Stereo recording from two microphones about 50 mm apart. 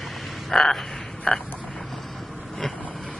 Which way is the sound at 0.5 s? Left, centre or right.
Centre.